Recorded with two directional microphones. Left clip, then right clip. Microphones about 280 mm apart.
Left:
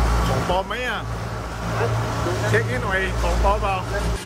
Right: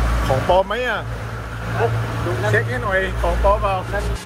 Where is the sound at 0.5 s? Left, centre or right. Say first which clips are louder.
Right 6 dB; centre.